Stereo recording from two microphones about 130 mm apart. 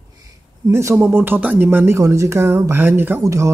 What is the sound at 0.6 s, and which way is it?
Speech, 20° right (ahead or behind).